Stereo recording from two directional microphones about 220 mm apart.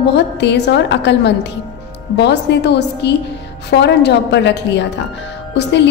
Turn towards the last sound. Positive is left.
turn(degrees=50)  # may be behind; listen again after turning